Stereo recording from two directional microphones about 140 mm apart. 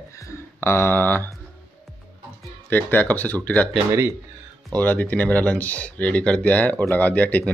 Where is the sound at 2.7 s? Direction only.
15° left (ahead or behind).